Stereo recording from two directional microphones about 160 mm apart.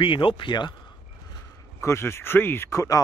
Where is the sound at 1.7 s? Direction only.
15° left (ahead or behind).